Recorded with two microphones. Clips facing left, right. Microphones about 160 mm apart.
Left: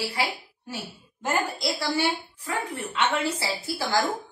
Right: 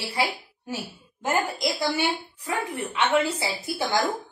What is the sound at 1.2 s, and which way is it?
A woman's voice, 15° right (ahead or behind).